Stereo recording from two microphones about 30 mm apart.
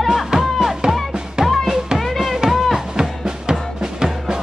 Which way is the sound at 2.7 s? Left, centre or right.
Right.